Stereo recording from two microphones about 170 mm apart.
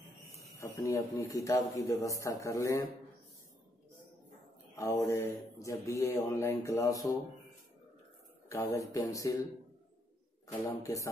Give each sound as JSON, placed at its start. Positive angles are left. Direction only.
{"t": 0.6, "sound": "speech", "side_deg": 15}
{"t": 4.7, "sound": "a man's voice", "side_deg": 20}
{"t": 8.5, "sound": "speech", "side_deg": 20}
{"t": 10.8, "sound": "speech", "side_deg": 20}